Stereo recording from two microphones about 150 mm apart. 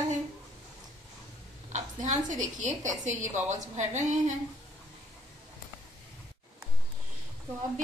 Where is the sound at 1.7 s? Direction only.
55° right (ahead or behind).